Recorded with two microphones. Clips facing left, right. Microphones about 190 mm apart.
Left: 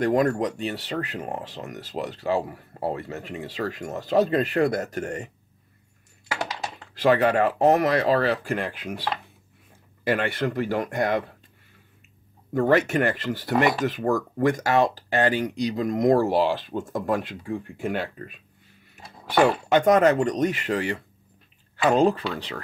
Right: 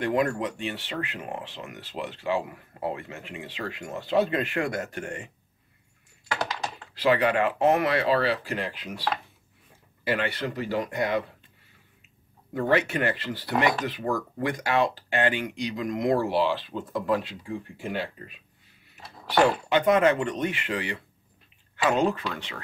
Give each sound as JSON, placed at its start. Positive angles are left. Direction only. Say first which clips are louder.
{"t": 0.0, "sound": "speech", "louder": "left 4 dB", "side_deg": 40}
{"t": 7.0, "sound": "speech", "louder": "left 3 dB", "side_deg": 45}
{"t": 10.0, "sound": "speech", "louder": "left 4 dB", "side_deg": 50}
{"t": 12.5, "sound": "speech", "louder": "left 4 dB", "side_deg": 45}
{"t": 19.7, "sound": "speech", "louder": "left 5 dB", "side_deg": 45}